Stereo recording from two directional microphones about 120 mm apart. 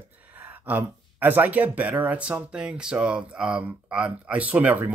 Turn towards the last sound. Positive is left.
turn(degrees=-15)  # may be behind; listen again after turning